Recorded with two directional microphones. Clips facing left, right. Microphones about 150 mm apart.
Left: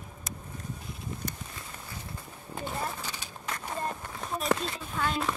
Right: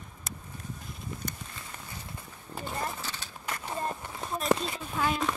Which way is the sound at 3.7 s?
5° right (ahead or behind).